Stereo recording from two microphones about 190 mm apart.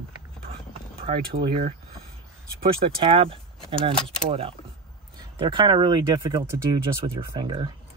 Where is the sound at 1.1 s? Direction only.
35° right (ahead or behind).